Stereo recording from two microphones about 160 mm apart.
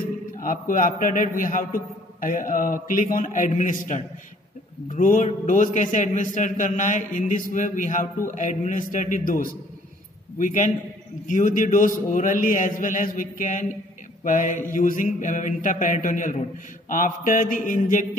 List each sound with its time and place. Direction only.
0.3 s a man's voice: 60° left (ahead or behind)
10.4 s a man's voice: 55° left (ahead or behind)